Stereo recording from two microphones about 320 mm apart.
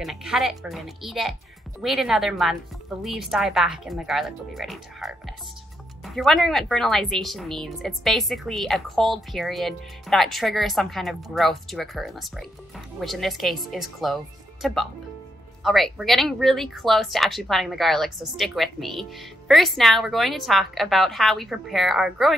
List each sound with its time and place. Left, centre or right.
0.0 s speech: centre